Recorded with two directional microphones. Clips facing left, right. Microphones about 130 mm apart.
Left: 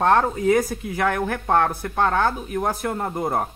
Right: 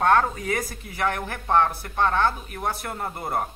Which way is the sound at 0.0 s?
30° left (ahead or behind).